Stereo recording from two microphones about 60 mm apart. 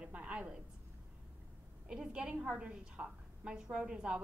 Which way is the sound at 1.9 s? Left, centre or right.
Centre.